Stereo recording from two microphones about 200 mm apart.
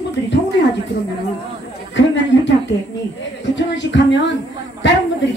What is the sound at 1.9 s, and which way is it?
Speech, 65° left (ahead or behind).